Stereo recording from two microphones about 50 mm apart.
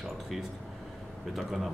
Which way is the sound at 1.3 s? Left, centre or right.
Centre.